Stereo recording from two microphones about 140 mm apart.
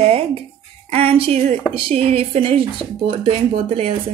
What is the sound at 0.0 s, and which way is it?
Music, 45° right (ahead or behind).